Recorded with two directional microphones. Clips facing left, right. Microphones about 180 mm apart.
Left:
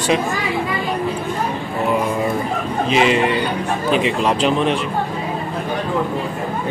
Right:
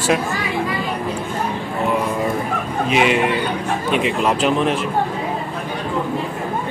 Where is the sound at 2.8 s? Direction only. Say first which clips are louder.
Left 1 dB; 5° right (ahead or behind).